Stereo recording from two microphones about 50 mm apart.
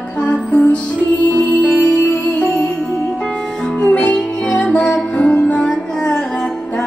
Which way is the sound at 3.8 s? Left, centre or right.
Left.